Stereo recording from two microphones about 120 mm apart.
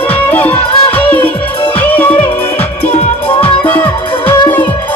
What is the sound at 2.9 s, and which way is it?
Music, 55° left (ahead or behind).